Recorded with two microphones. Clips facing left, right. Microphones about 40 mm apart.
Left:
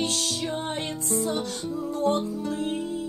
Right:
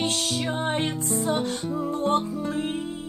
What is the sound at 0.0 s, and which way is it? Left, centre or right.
Music, right.